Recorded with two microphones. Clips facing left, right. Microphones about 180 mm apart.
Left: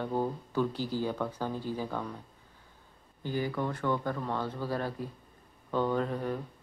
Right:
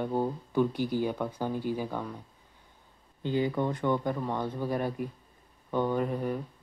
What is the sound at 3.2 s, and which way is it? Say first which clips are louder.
Speech: right 4 dB; 20° right (ahead or behind).